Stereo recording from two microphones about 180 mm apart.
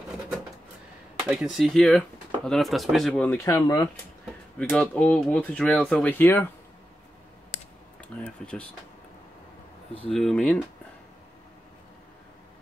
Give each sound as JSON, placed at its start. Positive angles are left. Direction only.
{"t": 1.3, "sound": "speech", "side_deg": 0}
{"t": 3.4, "sound": "speech", "side_deg": 20}
{"t": 4.6, "sound": "speech", "side_deg": 10}
{"t": 8.0, "sound": "speech", "side_deg": 5}
{"t": 10.1, "sound": "speech", "side_deg": 0}